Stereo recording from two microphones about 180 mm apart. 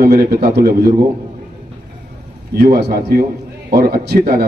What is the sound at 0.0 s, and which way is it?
Speech, 50° right (ahead or behind).